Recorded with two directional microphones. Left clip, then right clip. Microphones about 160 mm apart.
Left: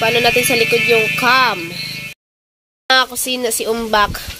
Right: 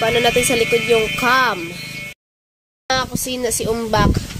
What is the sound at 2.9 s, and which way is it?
Speech, centre (ahead or behind).